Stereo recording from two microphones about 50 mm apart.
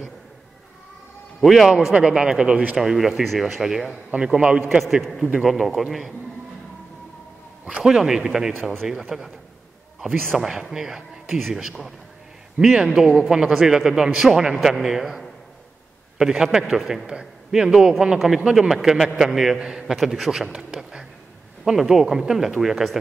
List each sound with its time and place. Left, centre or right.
1.4 s a man's voice: centre
2.0 s speech: centre
2.8 s a man's voice: centre
4.6 s a man's voice: centre
7.8 s speech: centre
10.3 s a man's voice: centre
20.5 s speech: centre